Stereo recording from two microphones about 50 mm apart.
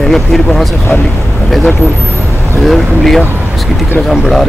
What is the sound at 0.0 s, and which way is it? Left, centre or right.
Speech, centre.